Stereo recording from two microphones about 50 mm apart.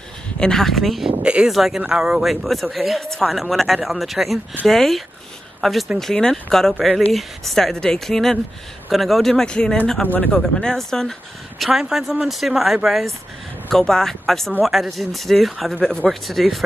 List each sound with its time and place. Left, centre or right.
0.4 s speech: centre
1.2 s speech: right
1.5 s speech: centre
2.2 s speech: centre
10.0 s speech: left
10.6 s speech: centre
11.9 s speech: centre
13.7 s speech: centre
15.7 s speech: centre
16.1 s speech: centre